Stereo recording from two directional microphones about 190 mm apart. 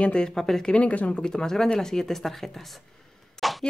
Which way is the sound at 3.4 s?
Centre (ahead or behind).